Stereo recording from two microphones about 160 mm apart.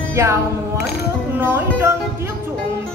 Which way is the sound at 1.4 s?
15° right (ahead or behind).